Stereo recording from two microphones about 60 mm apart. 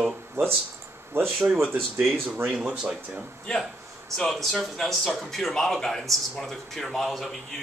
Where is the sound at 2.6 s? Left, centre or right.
Centre.